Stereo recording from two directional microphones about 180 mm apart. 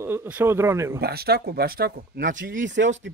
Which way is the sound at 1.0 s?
60° right (ahead or behind).